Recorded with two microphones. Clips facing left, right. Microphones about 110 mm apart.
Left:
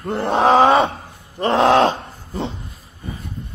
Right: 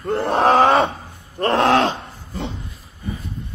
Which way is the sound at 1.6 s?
25° left (ahead or behind).